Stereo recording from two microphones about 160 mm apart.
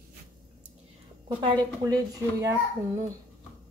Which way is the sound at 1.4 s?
30° right (ahead or behind).